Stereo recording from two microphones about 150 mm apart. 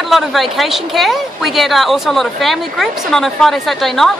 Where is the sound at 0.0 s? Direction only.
Centre (ahead or behind).